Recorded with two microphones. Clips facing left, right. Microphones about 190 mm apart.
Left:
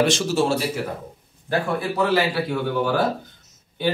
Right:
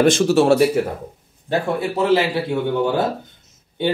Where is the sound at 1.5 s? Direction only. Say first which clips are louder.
Right 3 dB; 25° right (ahead or behind).